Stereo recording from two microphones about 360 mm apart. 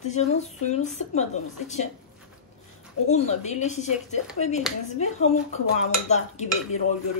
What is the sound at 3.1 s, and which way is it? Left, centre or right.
Speech, centre.